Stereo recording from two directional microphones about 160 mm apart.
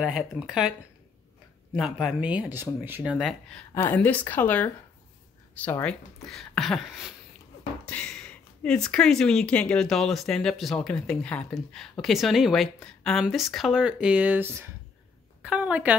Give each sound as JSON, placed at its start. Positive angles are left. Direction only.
{"t": 0.0, "sound": "speech", "side_deg": -5}
{"t": 1.8, "sound": "speech", "side_deg": 0}
{"t": 3.7, "sound": "speech", "side_deg": 15}